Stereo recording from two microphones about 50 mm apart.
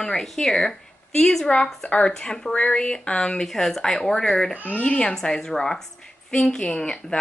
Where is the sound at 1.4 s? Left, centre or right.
Centre.